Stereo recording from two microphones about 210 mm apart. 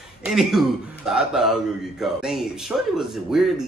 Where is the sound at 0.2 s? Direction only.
Centre (ahead or behind).